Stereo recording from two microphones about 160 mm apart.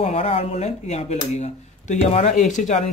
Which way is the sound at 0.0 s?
40° left (ahead or behind).